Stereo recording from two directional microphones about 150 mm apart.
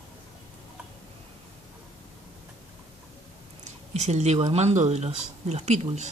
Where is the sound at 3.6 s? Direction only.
50° right (ahead or behind).